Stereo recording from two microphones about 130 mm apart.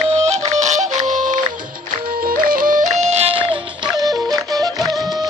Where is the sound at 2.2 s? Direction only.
90° right; by 5.2 s 30° right (ahead or behind).